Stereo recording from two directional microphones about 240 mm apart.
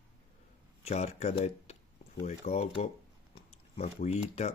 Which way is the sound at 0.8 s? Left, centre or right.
Left.